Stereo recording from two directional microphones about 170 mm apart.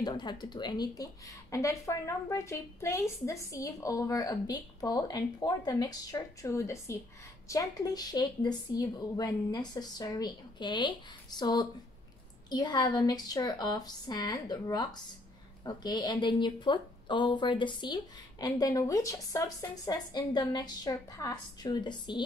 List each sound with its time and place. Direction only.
0.0 s speech: 25° left (ahead or behind)